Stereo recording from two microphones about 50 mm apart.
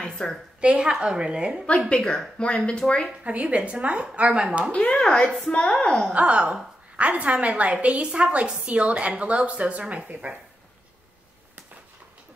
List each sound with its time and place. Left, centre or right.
0.0 s a sound: centre
0.6 s a woman's voice: centre
1.9 s a woman's voice: centre
3.3 s a woman's voice: right
4.9 s a woman's voice: centre
6.0 s a woman's voice: right